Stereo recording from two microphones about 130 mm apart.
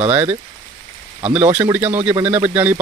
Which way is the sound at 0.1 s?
15° right (ahead or behind).